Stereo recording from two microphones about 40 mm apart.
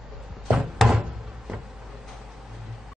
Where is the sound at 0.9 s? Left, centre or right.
Right.